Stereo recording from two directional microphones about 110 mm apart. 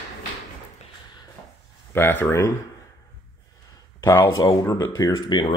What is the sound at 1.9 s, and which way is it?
Speech, 20° left (ahead or behind).